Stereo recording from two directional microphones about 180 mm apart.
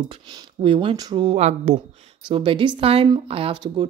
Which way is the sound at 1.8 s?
25° right (ahead or behind).